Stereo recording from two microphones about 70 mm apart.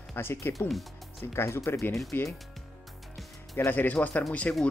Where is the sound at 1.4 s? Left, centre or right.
Left.